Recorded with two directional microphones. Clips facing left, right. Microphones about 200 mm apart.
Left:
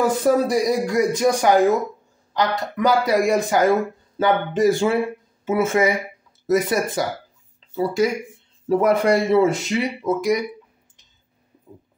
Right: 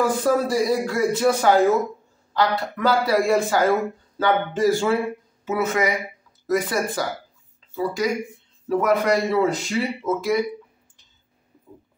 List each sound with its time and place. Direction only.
0.0 s speech: 20° left (ahead or behind)